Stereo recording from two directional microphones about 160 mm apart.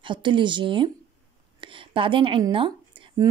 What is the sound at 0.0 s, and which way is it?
A woman's voice, 30° right (ahead or behind).